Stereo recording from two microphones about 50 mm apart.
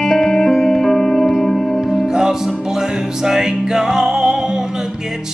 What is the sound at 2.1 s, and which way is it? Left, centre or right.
Music, centre.